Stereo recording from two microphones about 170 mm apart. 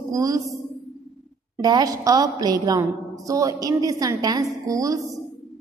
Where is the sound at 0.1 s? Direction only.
20° right (ahead or behind).